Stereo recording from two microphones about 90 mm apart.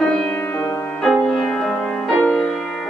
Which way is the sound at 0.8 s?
5° left (ahead or behind).